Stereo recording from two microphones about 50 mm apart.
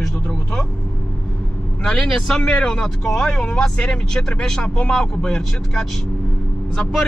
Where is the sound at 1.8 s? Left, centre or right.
Centre.